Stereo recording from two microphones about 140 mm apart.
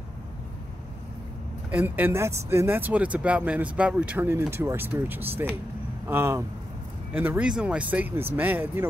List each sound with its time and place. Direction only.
1.7 s speech: 10° right (ahead or behind)